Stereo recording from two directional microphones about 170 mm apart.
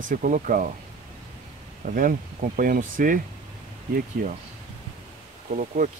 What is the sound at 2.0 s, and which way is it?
Speech, 55° right (ahead or behind).